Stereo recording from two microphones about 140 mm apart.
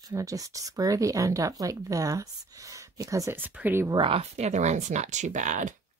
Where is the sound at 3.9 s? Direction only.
40° right (ahead or behind); by 5.7 s 60° right (ahead or behind).